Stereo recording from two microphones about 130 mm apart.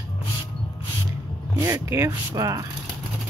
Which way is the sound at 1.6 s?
20° right (ahead or behind).